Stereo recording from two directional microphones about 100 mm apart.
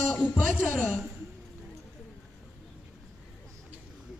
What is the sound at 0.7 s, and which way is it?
Speech, 15° left (ahead or behind).